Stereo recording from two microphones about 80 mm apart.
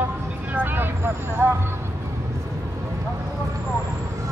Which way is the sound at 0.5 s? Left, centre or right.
Right.